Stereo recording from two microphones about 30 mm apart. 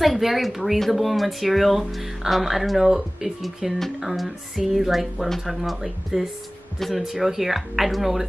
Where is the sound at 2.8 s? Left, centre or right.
Centre.